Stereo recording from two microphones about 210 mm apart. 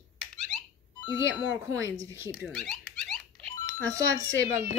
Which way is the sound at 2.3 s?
Centre (ahead or behind).